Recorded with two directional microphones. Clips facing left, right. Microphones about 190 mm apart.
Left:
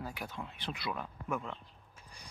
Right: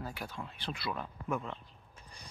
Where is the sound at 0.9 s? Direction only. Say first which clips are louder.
Right 1 dB; 5° left (ahead or behind).